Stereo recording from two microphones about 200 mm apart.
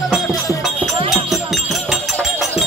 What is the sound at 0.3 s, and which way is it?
Music, 15° left (ahead or behind).